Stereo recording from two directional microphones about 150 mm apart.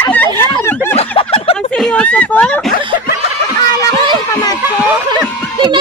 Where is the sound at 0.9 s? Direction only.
40° left (ahead or behind).